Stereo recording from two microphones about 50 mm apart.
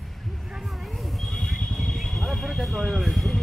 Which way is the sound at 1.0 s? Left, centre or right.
Centre.